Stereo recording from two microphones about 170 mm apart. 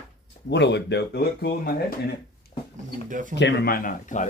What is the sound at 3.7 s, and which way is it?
Speech, 50° left (ahead or behind).